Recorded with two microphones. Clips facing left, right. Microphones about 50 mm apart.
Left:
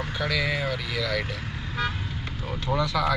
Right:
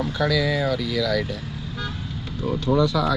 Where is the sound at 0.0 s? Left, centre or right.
Left.